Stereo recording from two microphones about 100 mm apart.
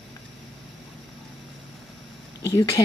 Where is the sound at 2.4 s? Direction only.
35° left (ahead or behind).